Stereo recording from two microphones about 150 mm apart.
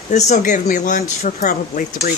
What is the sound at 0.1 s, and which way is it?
Speech, 55° left (ahead or behind).